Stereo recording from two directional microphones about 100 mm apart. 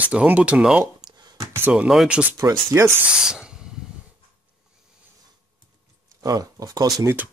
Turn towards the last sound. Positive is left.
turn(degrees=-35)  # may be behind; listen again after turning